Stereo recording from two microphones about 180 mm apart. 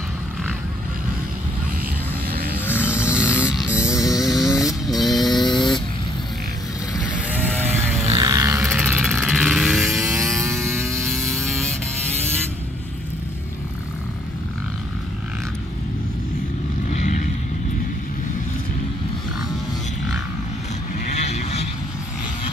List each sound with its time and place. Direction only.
2.6 s a sound: 10° left (ahead or behind)
2.9 s a sound: 5° right (ahead or behind)
4.2 s vehicle: centre (ahead or behind)
5.5 s vehicle: 25° left (ahead or behind)
7.5 s vehicle: 10° right (ahead or behind)
8.2 s vehicle: 20° right (ahead or behind); by 10.0 s centre (ahead or behind)
10.4 s vehicle: 15° right (ahead or behind)
11.3 s vehicle: 5° left (ahead or behind)
16.9 s vehicle: 45° left (ahead or behind)
21.0 s vehicle: 35° left (ahead or behind)